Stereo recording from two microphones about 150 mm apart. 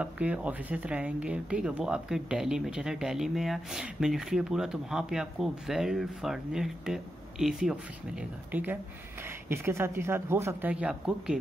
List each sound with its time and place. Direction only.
0.0 s speech: 10° right (ahead or behind)